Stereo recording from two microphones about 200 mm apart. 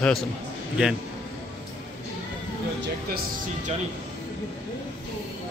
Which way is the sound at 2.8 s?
50° right (ahead or behind).